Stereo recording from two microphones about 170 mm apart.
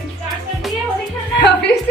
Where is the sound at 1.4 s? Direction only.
85° left.